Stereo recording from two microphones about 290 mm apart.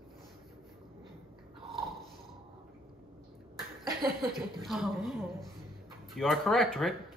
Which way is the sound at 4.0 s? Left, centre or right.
Centre.